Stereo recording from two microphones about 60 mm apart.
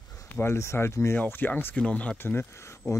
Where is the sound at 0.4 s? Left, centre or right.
Left.